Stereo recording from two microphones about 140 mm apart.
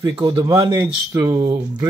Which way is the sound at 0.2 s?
30° right (ahead or behind).